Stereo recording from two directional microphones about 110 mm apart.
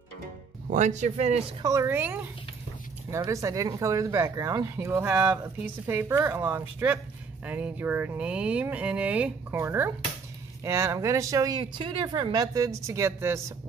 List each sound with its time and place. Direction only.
0.8 s a man's voice: 90° right
1.6 s speech: 30° right (ahead or behind)
2.0 s speech: 15° right (ahead or behind)
3.3 s speech: 30° right (ahead or behind); by 9.6 s 10° right (ahead or behind)
9.6 s speech: 20° right (ahead or behind)
11.8 s speech: 45° right (ahead or behind); by 13.4 s 25° right (ahead or behind)